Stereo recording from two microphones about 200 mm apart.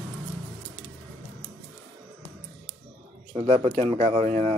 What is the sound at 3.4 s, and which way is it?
Speech, 25° right (ahead or behind).